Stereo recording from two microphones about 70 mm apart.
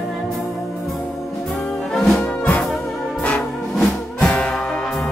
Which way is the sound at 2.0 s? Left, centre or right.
Centre.